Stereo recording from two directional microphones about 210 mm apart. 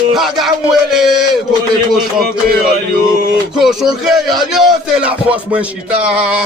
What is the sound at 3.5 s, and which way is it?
Music, centre (ahead or behind).